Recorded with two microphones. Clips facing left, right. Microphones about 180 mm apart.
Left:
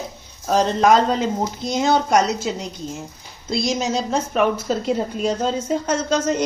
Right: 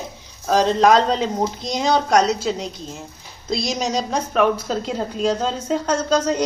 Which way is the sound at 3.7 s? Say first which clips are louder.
Left 1 dB; 5° left (ahead or behind).